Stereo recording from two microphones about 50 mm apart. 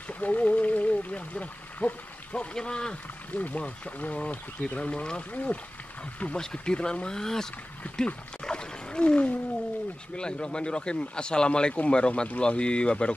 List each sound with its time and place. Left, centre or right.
0.2 s a sound: left
2.3 s speech: centre
3.3 s speech: left
6.3 s speech: centre
7.8 s wild animals: left
8.5 s whale vocalization: centre
10.1 s speech: centre